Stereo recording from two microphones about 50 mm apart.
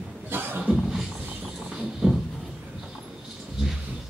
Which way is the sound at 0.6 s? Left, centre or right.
Centre.